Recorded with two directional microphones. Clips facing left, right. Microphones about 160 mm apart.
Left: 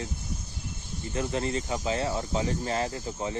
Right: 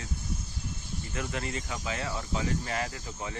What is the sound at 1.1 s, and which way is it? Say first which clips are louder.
Speech: left 6 dB; 30° left (ahead or behind).